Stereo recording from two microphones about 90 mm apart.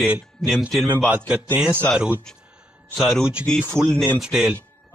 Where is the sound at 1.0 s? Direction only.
15° right (ahead or behind).